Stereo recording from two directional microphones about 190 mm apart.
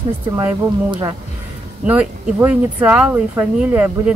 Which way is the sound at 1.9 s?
5° right (ahead or behind).